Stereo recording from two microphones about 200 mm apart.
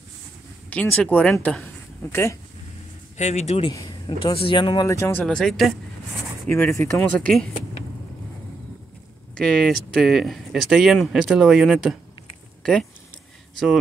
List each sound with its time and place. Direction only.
0.7 s speech: 5° left (ahead or behind)
3.2 s speech: 35° left (ahead or behind); by 5.2 s 15° left (ahead or behind)
5.2 s speech: centre (ahead or behind)
6.5 s speech: 10° left (ahead or behind)
9.3 s speech: 5° left (ahead or behind)